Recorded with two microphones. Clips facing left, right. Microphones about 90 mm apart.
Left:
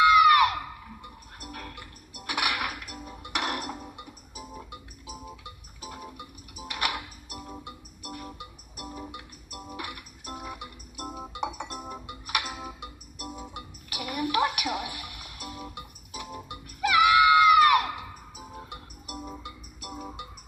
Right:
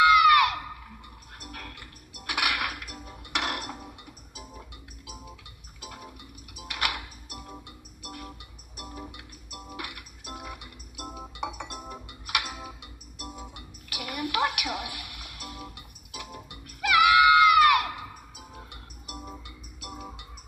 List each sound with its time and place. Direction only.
0.0 s a sound: 30° left (ahead or behind)
1.4 s music: 30° left (ahead or behind)
5.9 s music: 30° left (ahead or behind)
6.6 s tick-tock: 30° left (ahead or behind)
7.6 s music: 25° left (ahead or behind)
9.8 s music: 30° left (ahead or behind)
11.7 s music: 20° left (ahead or behind)